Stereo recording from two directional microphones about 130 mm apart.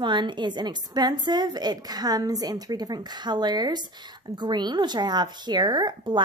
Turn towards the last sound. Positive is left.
turn(degrees=-35)  # may be behind; listen again after turning